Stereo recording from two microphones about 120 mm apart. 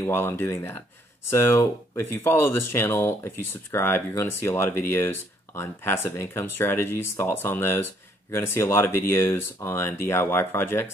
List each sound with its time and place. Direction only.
0.0 s speech: 20° left (ahead or behind)